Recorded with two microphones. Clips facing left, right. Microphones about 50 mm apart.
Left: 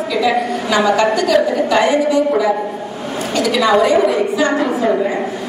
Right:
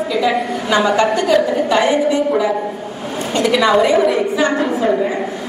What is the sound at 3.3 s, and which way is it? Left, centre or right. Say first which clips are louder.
A woman's voice: even; right.